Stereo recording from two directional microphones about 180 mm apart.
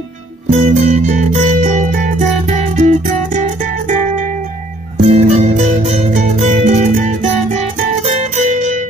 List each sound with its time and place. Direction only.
0.5 s music: 40° right (ahead or behind)